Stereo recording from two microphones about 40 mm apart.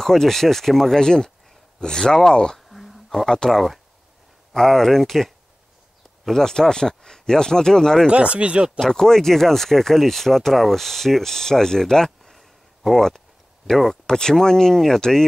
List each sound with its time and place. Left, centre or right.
0.0 s speech: centre
2.7 s a sound: centre
3.3 s speech: centre
6.3 s speech: centre
8.1 s speech: right
8.7 s speech: centre
12.2 s a sound: centre
13.7 s speech: centre